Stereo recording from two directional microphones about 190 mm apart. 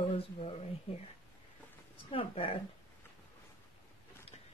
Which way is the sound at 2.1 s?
30° left (ahead or behind).